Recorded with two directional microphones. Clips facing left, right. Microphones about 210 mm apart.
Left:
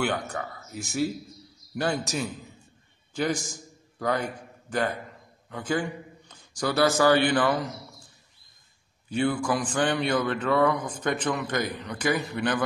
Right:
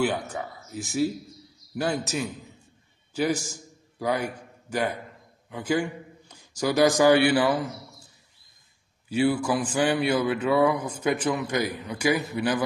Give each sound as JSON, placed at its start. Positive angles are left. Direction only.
{"t": 0.0, "sound": "a man's voice", "side_deg": -5}
{"t": 9.1, "sound": "speech", "side_deg": -5}